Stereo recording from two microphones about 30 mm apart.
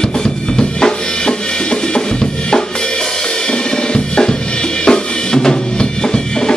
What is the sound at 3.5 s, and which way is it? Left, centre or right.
Drum kit, left.